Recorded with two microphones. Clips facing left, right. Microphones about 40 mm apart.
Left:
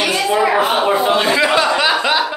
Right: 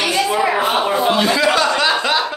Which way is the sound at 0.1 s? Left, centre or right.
Centre.